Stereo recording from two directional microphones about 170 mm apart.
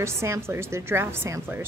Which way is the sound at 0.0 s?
15° right (ahead or behind).